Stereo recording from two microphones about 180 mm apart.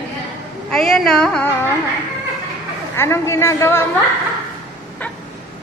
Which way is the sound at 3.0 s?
15° left (ahead or behind).